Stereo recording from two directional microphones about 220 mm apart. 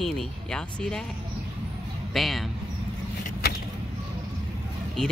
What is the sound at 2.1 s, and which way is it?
Speech, centre (ahead or behind).